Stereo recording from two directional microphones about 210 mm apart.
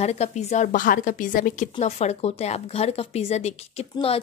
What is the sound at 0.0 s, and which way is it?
A woman's voice, 30° left (ahead or behind).